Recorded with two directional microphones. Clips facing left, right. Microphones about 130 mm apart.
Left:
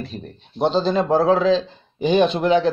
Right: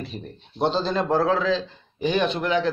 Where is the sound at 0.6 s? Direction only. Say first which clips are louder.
Left 4 dB; 15° left (ahead or behind).